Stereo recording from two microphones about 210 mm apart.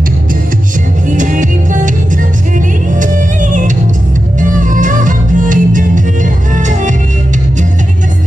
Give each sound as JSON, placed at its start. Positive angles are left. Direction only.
{"t": 1.0, "sound": "music", "side_deg": -35}